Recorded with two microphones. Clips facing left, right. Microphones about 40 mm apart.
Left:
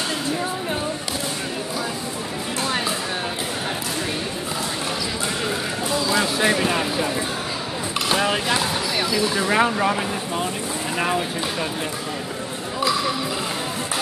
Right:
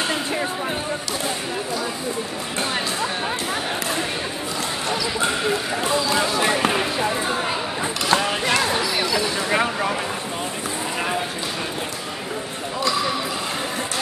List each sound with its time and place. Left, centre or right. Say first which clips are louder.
6.0 s basketball bounce: even; centre
6.7 s basketball bounce: right 1 dB; centre
8.1 s a sound: even; centre
8.9 s a sound: even; centre
9.4 s speech: left 2 dB; centre
11.0 s speech: left 3 dB; centre